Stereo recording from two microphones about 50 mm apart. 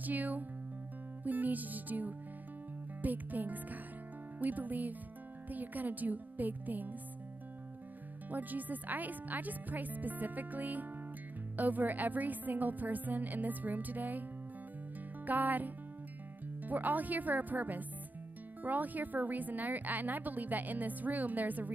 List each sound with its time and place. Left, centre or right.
0.0 s speech: right
1.2 s music: right
3.0 s speech: right
8.3 s speech: right
15.2 s speech: right